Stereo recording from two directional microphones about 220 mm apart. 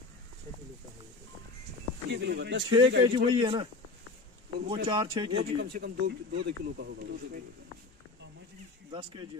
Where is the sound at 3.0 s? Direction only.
20° right (ahead or behind).